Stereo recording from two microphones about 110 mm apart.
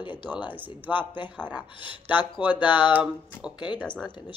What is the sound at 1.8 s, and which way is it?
Speech, 45° left (ahead or behind).